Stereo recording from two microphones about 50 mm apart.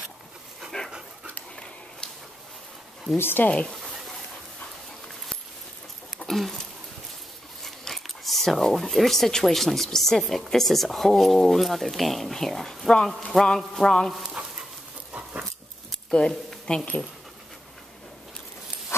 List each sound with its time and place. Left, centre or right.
0.7 s dog: centre
3.2 s speech: left
3.4 s speech: left
6.2 s a sound: centre
7.6 s speech: centre
13.3 s a sound: centre
14.4 s dog: right
15.9 s a sound: centre
16.7 s speech: left